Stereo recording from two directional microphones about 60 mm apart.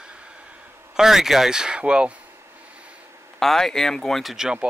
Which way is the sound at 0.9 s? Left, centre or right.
Centre.